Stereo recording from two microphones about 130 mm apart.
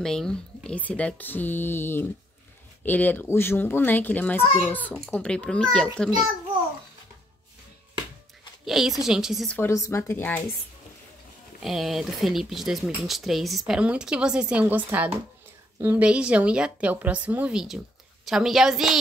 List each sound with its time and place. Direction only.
0.0 s speech: 5° left (ahead or behind)
8.6 s speech: centre (ahead or behind)
9.5 s speech: 20° left (ahead or behind)
11.6 s a woman's voice: centre (ahead or behind)